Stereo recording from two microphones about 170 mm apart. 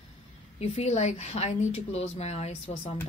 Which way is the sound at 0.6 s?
40° left (ahead or behind).